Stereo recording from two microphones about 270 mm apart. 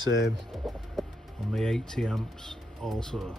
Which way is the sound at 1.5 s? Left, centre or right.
Centre.